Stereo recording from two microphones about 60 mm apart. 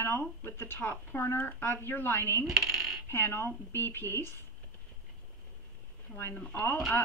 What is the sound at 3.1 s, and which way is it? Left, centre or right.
A woman's voice, left.